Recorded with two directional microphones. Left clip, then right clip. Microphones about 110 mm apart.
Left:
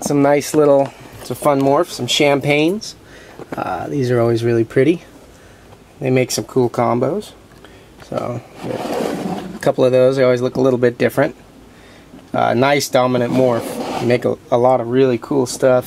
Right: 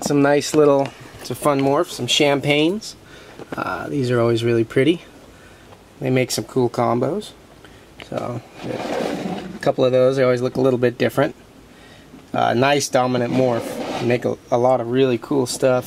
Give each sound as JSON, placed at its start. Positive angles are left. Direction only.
{"t": 0.2, "sound": "speech", "side_deg": -20}
{"t": 8.5, "sound": "speech", "side_deg": 10}